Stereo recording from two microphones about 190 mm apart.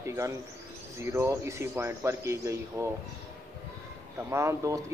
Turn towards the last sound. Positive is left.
turn(degrees=-15)  # may be behind; listen again after turning